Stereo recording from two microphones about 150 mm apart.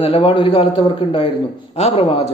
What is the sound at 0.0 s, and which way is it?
A man's voice, 35° left (ahead or behind).